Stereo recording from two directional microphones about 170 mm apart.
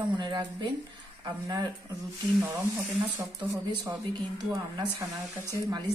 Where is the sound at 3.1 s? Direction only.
15° right (ahead or behind).